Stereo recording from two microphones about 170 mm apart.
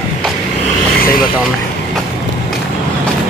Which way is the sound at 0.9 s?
60° left (ahead or behind).